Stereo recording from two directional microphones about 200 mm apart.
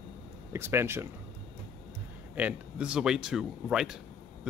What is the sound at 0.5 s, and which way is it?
Speech, 10° right (ahead or behind).